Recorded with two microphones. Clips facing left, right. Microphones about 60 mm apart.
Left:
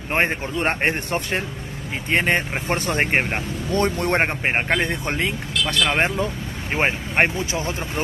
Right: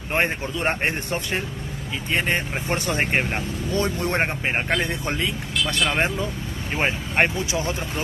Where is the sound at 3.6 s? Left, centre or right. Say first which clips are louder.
Left 4 dB; left.